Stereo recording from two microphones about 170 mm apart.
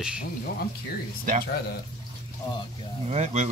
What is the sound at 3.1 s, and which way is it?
Speech, 40° right (ahead or behind).